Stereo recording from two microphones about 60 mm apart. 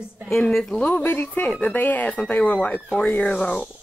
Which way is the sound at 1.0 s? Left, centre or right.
Left.